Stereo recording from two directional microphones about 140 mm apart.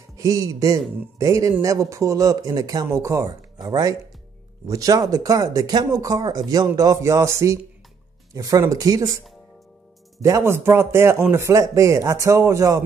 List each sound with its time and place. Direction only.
0.2 s speech: 25° right (ahead or behind)
10.2 s speech: 20° right (ahead or behind)